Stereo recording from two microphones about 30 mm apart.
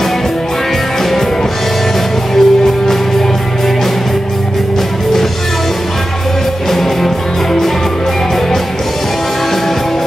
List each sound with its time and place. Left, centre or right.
2.3 s music: centre
6.7 s music: centre